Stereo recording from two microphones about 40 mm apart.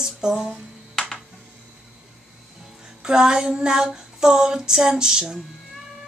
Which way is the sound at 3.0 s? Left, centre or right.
Centre.